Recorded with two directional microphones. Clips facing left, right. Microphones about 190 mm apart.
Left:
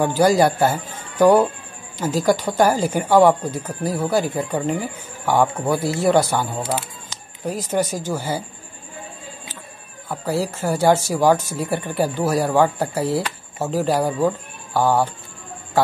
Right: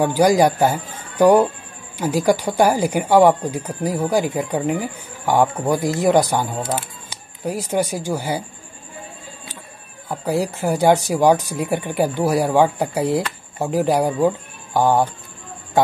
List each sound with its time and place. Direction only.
0.0 s speech: 15° right (ahead or behind)
10.0 s speech: 15° right (ahead or behind)